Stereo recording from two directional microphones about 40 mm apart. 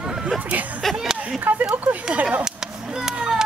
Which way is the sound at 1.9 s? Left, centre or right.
Right.